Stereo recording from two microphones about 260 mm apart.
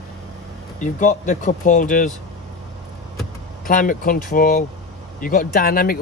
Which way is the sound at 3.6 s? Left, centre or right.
Left.